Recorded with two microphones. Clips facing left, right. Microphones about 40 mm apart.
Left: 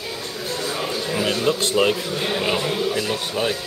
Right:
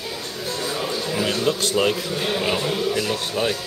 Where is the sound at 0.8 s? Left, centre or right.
Centre.